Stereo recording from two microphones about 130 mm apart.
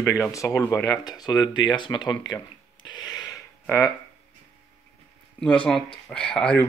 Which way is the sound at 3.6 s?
20° left (ahead or behind).